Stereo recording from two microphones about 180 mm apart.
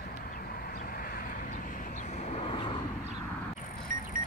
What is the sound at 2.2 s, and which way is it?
Vehicle, 35° left (ahead or behind).